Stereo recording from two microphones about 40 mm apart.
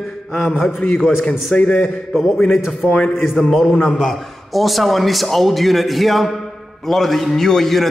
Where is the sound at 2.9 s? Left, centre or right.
Left.